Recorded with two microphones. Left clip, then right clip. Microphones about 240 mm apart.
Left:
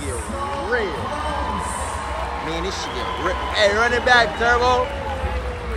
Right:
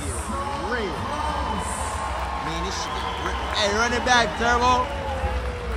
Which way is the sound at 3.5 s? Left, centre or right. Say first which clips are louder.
Left 5 dB; right.